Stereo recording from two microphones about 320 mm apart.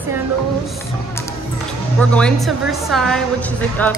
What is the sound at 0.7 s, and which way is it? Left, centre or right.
Music, centre.